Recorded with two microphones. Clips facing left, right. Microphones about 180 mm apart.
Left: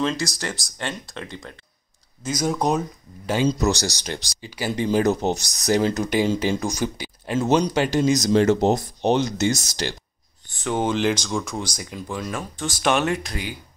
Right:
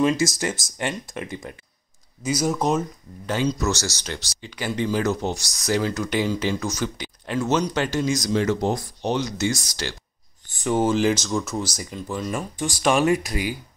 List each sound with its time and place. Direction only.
0.0 s speech: 20° right (ahead or behind); by 2.8 s centre (ahead or behind)
3.4 s speech: 20° left (ahead or behind)
10.6 s speech: 5° right (ahead or behind)
12.5 s speech: 10° right (ahead or behind)